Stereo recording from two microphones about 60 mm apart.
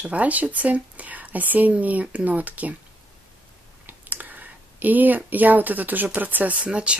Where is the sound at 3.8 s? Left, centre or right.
Right.